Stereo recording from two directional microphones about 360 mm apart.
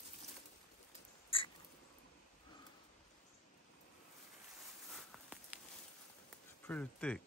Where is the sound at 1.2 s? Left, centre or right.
Centre.